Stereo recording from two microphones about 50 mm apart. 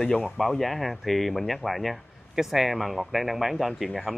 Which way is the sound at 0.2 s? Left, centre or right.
Centre.